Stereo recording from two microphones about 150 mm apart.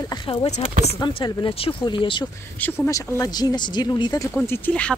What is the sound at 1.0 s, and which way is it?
Speech, 35° left (ahead or behind).